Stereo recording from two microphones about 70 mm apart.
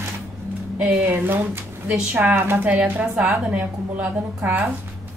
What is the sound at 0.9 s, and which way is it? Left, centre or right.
A woman's voice, right.